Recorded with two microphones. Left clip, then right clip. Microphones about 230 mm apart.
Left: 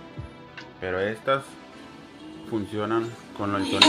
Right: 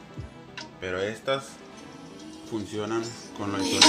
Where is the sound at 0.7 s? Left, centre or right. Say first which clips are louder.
Left 3 dB; centre.